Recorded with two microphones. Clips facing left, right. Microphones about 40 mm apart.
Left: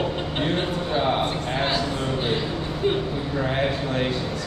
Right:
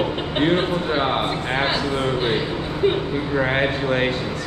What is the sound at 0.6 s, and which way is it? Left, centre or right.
A man's voice, right.